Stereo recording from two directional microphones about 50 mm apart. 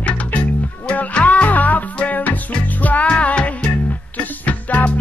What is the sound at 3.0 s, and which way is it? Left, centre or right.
Music, left.